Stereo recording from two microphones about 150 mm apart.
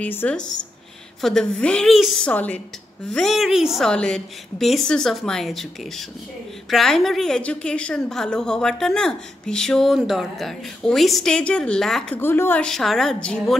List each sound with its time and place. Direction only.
0.0 s a woman's voice: 10° left (ahead or behind)
12.2 s a woman's voice: 15° left (ahead or behind)